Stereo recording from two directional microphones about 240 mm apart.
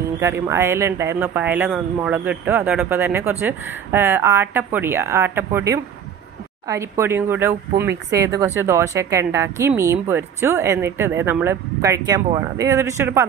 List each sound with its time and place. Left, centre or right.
0.0 s speech: centre
8.5 s speech: centre